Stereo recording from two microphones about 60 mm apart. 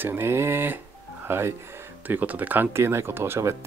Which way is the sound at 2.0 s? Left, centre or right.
Right.